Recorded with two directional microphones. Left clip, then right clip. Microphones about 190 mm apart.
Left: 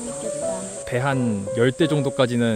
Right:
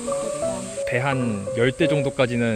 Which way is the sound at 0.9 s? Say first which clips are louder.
Left 1 dB; 20° left (ahead or behind).